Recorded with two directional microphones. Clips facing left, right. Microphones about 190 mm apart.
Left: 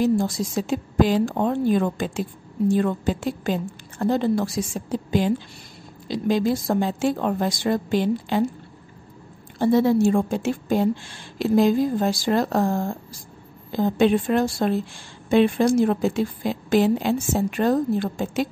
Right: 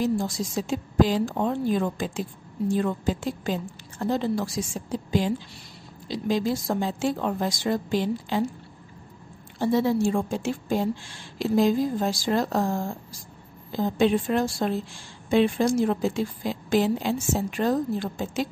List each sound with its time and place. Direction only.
0.0 s a woman's voice: 55° left (ahead or behind)
6.0 s a woman's voice: 55° left (ahead or behind)
9.6 s a woman's voice: 55° left (ahead or behind)